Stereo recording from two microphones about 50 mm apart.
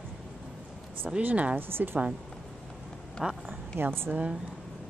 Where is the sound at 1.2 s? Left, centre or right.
Right.